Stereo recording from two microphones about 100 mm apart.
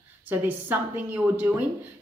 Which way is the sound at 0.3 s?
20° right (ahead or behind).